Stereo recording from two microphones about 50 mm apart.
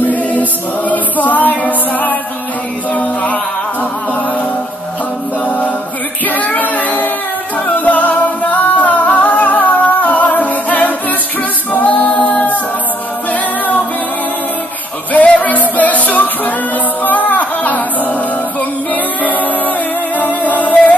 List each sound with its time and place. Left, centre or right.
0.0 s choir: left
2.9 s music: left
5.4 s a capella: left
6.2 s child singing: left
7.5 s music: left
11.7 s a capella: left
15.1 s music: left
19.2 s music: left